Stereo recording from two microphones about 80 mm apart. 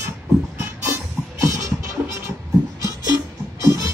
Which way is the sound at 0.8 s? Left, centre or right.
Right.